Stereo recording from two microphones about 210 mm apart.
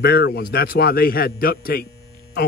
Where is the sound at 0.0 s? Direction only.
50° left (ahead or behind).